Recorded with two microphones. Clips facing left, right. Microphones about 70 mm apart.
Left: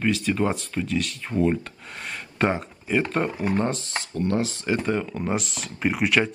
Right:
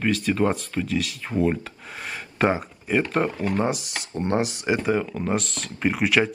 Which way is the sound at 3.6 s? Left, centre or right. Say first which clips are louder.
Right 1 dB; centre.